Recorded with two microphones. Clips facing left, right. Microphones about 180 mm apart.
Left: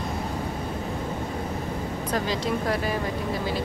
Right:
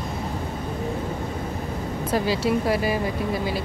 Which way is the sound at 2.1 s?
5° right (ahead or behind).